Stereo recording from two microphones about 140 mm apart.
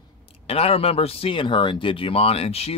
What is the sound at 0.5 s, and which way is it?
A man's voice, 45° left (ahead or behind).